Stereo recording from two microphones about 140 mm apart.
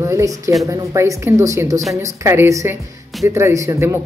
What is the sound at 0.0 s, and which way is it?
A woman's voice, 20° right (ahead or behind).